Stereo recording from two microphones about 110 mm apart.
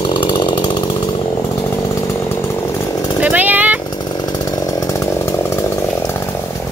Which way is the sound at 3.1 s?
15° right (ahead or behind).